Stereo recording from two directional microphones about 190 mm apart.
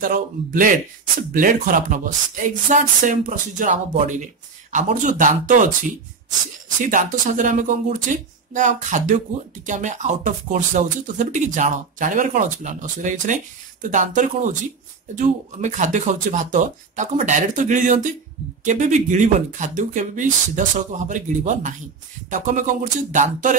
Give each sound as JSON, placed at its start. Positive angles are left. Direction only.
{"t": 0.0, "sound": "speech", "side_deg": -45}
{"t": 6.8, "sound": "speech", "side_deg": -45}